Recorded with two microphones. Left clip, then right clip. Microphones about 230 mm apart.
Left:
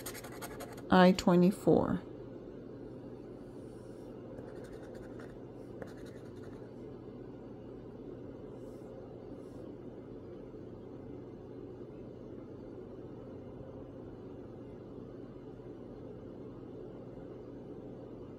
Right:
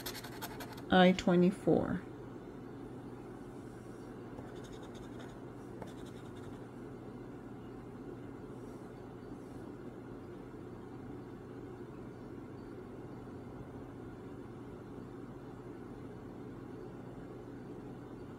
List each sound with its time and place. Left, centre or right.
0.8 s speech: left